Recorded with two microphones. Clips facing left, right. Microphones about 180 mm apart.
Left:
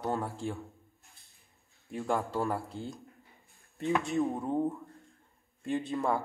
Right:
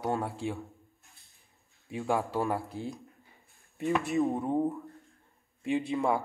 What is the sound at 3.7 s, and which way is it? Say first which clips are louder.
Speech: right 1 dB; centre (ahead or behind).